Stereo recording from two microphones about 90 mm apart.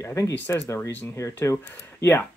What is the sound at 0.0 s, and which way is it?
Speech, 35° left (ahead or behind).